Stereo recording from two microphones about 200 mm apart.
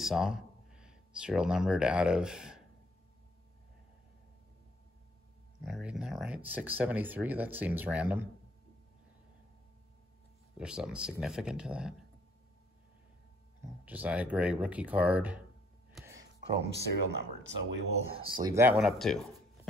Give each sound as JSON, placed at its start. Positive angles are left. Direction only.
{"t": 0.0, "sound": "speech", "side_deg": 0}
{"t": 5.6, "sound": "speech", "side_deg": -5}
{"t": 10.6, "sound": "speech", "side_deg": -5}
{"t": 13.8, "sound": "speech", "side_deg": -5}
{"t": 15.9, "sound": "a sound", "side_deg": -10}
{"t": 16.5, "sound": "speech", "side_deg": -55}
{"t": 18.1, "sound": "speech", "side_deg": -25}
{"t": 18.8, "sound": "speech", "side_deg": 0}